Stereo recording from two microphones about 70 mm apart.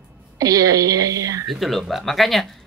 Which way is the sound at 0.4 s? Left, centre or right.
Right.